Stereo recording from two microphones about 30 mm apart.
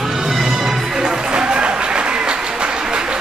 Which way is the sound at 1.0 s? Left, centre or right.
Right.